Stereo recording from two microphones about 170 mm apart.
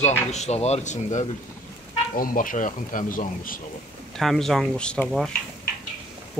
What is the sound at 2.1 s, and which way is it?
Speech, 55° left (ahead or behind).